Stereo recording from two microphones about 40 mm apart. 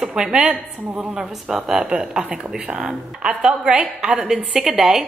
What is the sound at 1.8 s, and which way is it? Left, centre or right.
A woman's voice, right.